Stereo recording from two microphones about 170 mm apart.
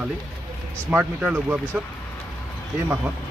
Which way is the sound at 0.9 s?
10° right (ahead or behind).